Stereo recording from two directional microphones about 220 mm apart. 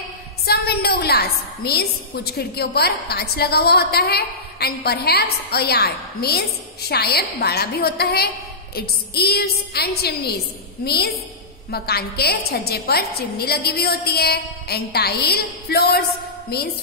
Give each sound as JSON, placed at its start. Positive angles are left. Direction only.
{"t": 0.5, "sound": "a woman's voice", "side_deg": 45}